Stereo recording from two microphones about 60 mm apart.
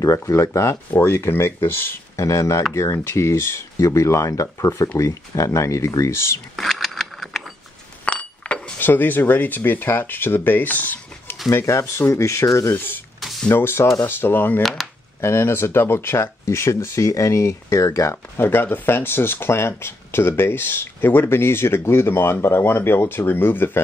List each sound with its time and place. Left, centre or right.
0.0 s speech: left
2.1 s speech: left
2.7 s speech: left
6.5 s a sound: centre
8.0 s chink: left
8.7 s speech: left
11.5 s speech: left
13.5 s speech: left
14.6 s speech: centre
15.1 s speech: left
18.4 s speech: left